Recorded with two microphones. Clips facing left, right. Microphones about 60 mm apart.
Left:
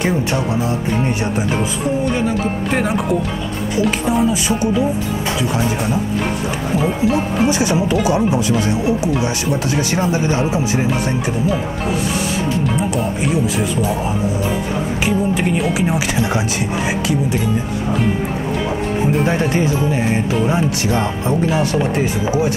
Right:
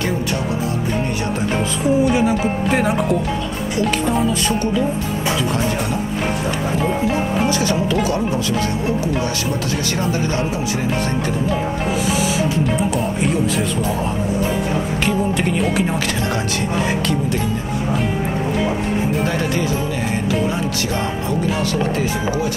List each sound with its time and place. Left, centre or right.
2.0 s speech: centre
7.4 s speech: centre
12.6 s speech: centre
15.0 s speech: centre
19.2 s speech: left